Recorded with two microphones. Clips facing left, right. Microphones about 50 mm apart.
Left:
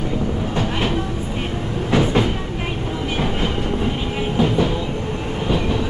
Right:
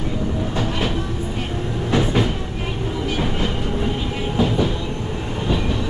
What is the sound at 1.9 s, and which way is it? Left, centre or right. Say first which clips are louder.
Train: left 2 dB; centre.